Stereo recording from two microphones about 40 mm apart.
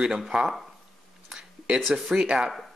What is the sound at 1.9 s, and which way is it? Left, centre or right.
Speech, right.